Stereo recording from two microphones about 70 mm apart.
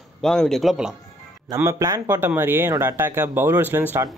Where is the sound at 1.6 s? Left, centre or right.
Right.